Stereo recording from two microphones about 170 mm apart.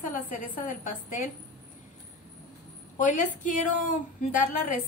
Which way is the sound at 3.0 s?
50° left (ahead or behind).